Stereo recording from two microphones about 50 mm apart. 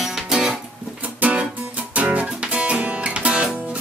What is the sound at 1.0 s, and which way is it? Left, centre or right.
Music, right.